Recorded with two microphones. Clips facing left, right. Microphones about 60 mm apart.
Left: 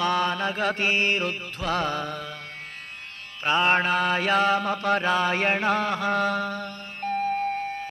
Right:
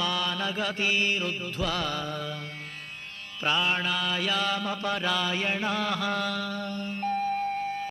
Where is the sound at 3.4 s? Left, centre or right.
Left.